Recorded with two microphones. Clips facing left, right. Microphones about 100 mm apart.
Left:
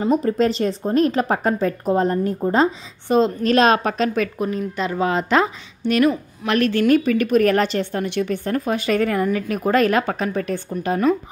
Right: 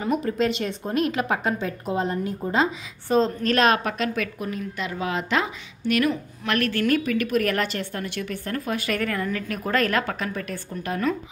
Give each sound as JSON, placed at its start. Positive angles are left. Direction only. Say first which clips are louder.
{"t": 0.0, "sound": "speech", "louder": "left 5 dB", "side_deg": 35}
{"t": 3.1, "sound": "a woman's voice", "louder": "left 4 dB", "side_deg": 5}
{"t": 3.4, "sound": "a woman's voice", "louder": "left 4 dB", "side_deg": 25}